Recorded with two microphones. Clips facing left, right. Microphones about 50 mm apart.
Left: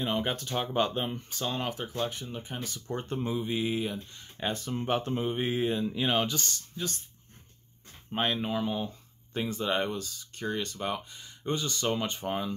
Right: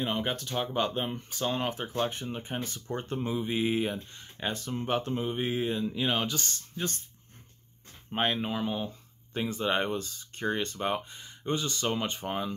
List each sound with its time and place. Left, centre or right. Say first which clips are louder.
0.0 s speech: left 1 dB; centre
0.4 s speech: left 1 dB; centre; by 2.8 s right
2.9 s speech: even; centre
3.4 s mantra: right 2 dB; centre
4.4 s speech: left 1 dB; centre
8.1 s speech: even; centre